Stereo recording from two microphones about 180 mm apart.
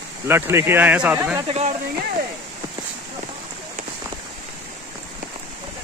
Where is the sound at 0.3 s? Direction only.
15° right (ahead or behind).